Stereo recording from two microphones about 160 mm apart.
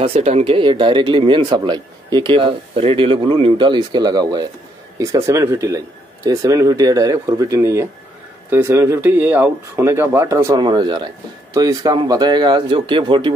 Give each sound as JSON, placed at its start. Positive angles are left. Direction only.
{"t": 0.0, "sound": "speech", "side_deg": -40}